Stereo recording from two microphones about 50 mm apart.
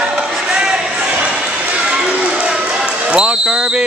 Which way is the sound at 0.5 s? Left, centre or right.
Centre.